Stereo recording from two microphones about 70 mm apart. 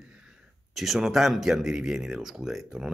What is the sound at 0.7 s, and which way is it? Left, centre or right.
Speech, centre.